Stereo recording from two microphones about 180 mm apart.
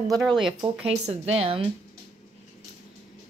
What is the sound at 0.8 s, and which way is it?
Speech, 35° right (ahead or behind).